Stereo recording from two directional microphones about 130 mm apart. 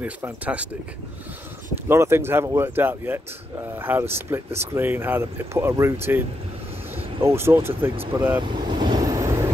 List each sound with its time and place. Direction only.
0.0 s speech: 10° right (ahead or behind)
1.9 s speech: 20° right (ahead or behind)
7.2 s speech: 20° right (ahead or behind)
8.4 s vehicle: 35° right (ahead or behind)